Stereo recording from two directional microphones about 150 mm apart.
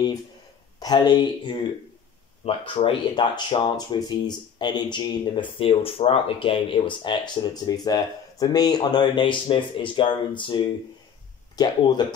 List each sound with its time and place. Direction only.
0.7 s speech: 25° left (ahead or behind)